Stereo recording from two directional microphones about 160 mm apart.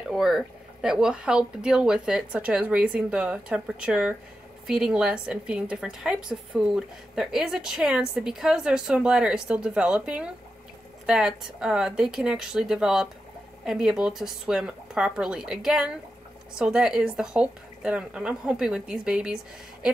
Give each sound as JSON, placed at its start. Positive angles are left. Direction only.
{"t": 0.1, "sound": "a woman's voice", "side_deg": 0}